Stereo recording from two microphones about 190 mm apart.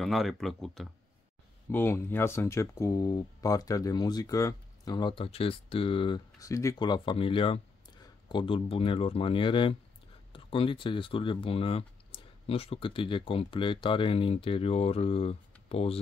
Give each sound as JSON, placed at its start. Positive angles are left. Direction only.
{"t": 0.0, "sound": "speech", "side_deg": 0}